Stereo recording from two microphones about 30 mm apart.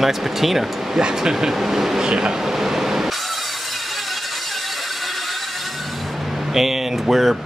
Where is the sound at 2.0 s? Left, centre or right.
Right.